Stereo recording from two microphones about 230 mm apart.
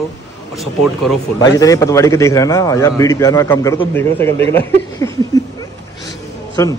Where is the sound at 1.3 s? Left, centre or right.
Centre.